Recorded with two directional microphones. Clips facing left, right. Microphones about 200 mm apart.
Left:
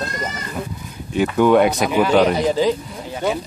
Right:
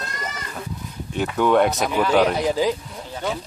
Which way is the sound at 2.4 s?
5° right (ahead or behind).